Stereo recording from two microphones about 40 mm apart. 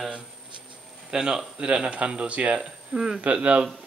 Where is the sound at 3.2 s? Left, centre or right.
Right.